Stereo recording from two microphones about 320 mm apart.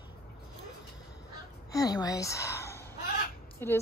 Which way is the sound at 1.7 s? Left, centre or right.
Centre.